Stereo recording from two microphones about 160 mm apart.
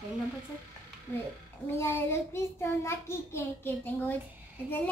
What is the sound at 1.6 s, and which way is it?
A child's voice, 15° left (ahead or behind).